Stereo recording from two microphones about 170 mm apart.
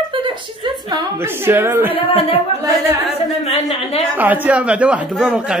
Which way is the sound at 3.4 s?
35° left (ahead or behind).